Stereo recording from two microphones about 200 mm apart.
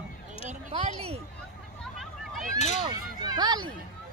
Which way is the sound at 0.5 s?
35° right (ahead or behind).